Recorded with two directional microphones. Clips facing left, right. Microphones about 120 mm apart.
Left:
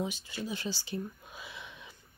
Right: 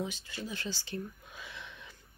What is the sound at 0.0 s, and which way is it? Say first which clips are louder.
Speech: left 2 dB; 15° left (ahead or behind).